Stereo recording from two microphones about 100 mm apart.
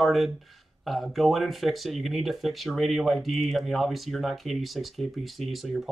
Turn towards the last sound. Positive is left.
turn(degrees=0)  # may be behind; listen again after turning